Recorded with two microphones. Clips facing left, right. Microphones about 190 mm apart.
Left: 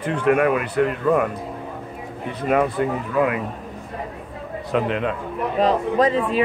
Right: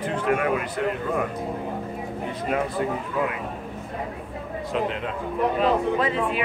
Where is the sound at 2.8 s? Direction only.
70° left (ahead or behind).